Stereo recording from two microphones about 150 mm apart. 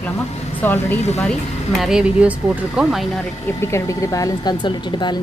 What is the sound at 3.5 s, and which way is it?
A woman's voice, 15° left (ahead or behind).